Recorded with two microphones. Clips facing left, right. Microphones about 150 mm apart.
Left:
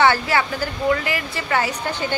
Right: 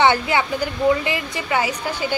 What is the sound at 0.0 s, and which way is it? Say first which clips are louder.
A woman's voice: even; 20° right (ahead or behind).